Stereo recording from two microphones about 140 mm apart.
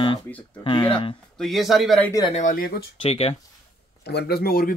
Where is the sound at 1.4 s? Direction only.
Centre (ahead or behind).